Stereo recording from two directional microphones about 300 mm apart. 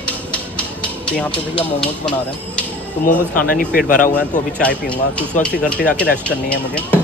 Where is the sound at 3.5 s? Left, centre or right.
Left.